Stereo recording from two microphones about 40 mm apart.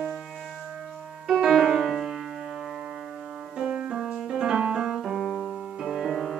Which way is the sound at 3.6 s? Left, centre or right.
Right.